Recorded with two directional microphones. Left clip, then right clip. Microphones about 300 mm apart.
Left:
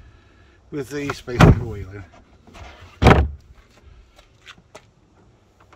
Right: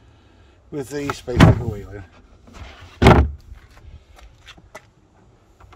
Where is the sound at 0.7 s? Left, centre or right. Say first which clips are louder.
Right 1 dB; centre.